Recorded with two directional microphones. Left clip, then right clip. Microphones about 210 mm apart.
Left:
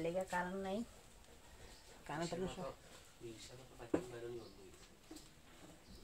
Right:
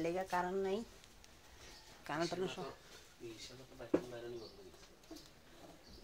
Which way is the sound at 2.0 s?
20° right (ahead or behind).